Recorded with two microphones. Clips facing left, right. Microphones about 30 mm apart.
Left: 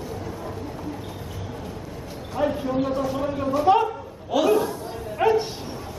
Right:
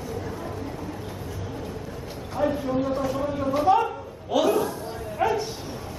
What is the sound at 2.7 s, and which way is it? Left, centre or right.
Speech, left.